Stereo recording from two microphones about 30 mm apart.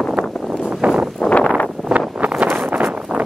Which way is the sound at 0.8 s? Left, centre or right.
Right.